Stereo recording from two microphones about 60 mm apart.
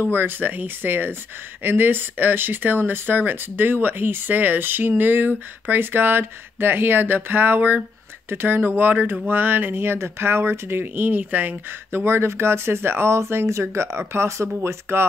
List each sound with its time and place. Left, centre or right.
0.0 s speech: right